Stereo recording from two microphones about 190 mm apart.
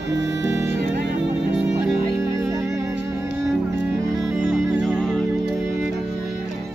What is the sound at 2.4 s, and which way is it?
Music, 15° right (ahead or behind).